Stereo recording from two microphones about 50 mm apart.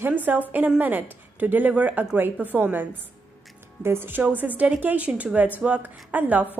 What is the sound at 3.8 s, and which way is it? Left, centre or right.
Speech, right.